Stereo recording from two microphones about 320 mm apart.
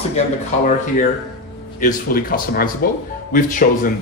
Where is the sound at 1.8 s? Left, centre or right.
Left.